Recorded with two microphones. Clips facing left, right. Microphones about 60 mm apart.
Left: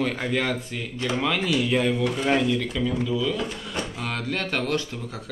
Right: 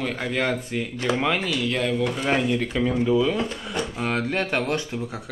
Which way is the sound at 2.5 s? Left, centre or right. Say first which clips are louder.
Right 2 dB; right.